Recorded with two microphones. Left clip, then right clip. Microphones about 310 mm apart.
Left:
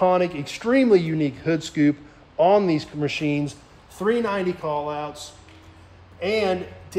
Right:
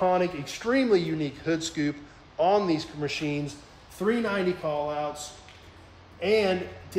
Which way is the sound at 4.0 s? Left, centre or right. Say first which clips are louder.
Left 4 dB; centre.